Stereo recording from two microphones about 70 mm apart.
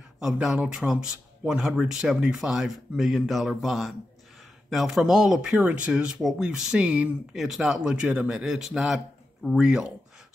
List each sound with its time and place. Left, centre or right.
0.2 s a man's voice: centre
5.6 s speech: centre
7.3 s a man's voice: centre
9.6 s speech: centre